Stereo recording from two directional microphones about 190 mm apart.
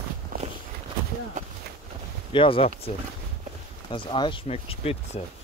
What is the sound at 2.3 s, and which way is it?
Speech, 25° left (ahead or behind).